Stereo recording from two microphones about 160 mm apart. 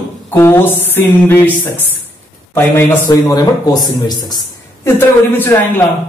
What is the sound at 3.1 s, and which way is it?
A man's voice, 25° left (ahead or behind).